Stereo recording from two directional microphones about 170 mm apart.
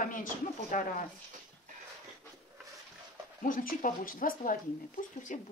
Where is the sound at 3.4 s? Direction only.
50° left (ahead or behind).